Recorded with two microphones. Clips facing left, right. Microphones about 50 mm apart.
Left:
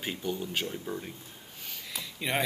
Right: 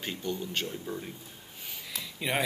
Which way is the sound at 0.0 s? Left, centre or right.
Centre.